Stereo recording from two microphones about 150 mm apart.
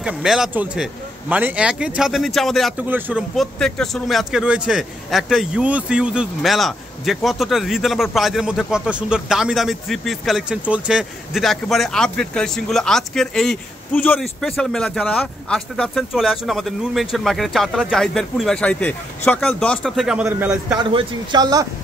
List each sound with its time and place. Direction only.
0.0 s speech: 5° right (ahead or behind)
2.8 s a man's voice: 10° right (ahead or behind)
3.3 s a man's voice: 5° left (ahead or behind)
20.9 s speech: 35° right (ahead or behind)